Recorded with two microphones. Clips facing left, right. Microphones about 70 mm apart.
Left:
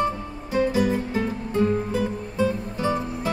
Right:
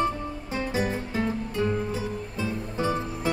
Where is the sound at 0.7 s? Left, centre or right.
Right.